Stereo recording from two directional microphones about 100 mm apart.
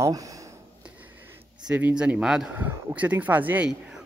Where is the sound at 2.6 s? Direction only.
15° right (ahead or behind).